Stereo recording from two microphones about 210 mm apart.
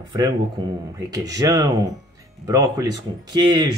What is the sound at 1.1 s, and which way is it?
Speech, 15° right (ahead or behind).